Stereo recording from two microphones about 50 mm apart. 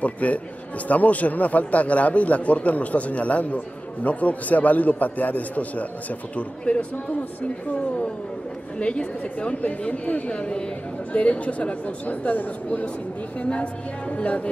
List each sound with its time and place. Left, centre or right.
0.0 s a man's voice: left
8.7 s a man's voice: left